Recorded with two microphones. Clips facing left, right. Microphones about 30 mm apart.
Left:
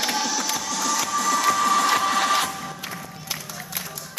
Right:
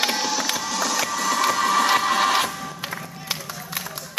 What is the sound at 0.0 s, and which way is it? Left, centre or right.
Music, right.